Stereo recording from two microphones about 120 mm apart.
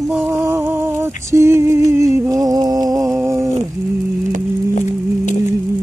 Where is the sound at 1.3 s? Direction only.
20° right (ahead or behind).